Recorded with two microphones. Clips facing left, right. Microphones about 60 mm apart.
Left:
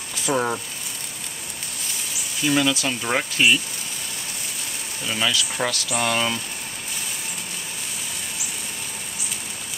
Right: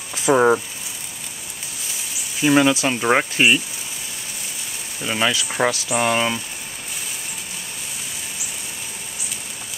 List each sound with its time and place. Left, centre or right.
0.3 s speech: right
2.4 s speech: right
5.0 s speech: right